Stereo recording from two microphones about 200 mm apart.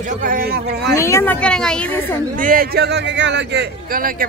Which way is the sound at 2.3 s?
45° right (ahead or behind).